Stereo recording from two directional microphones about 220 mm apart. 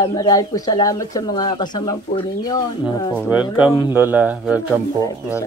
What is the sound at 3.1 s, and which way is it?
Speech, 5° right (ahead or behind).